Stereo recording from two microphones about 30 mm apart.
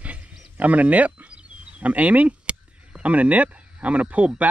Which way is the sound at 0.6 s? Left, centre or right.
Right.